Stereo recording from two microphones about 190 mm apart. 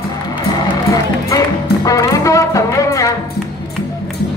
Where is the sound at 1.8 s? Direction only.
15° left (ahead or behind).